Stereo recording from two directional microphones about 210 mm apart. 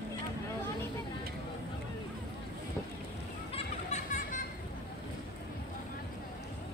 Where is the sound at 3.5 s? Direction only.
35° left (ahead or behind).